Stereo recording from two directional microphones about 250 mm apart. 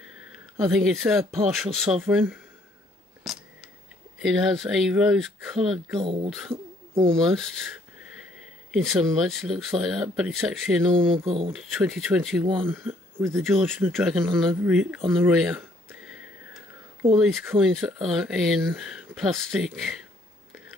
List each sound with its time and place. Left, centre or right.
0.7 s speech: centre
3.3 s camera: centre
4.2 s speech: centre
5.9 s speech: right
6.5 s owl: right
7.2 s speech: centre
11.2 s speech: right
11.5 s speech: centre
16.0 s a sound: centre
17.2 s speech: centre